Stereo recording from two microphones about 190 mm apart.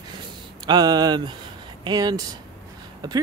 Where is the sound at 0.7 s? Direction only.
20° right (ahead or behind).